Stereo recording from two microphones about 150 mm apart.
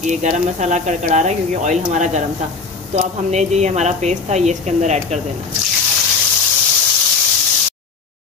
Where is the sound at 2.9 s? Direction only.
50° right (ahead or behind).